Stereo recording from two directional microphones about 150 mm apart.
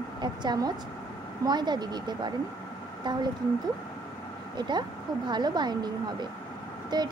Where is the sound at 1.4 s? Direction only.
30° right (ahead or behind).